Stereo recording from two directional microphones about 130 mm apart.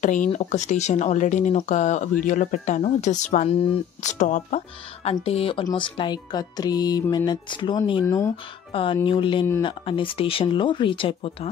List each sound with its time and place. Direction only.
0.0 s speech: 80° left
0.3 s speech: 60° left (ahead or behind)
5.0 s speech: 50° left (ahead or behind)
5.6 s speech: 35° left (ahead or behind)
8.0 s speech: 20° left (ahead or behind)
8.7 s speech: 40° left (ahead or behind)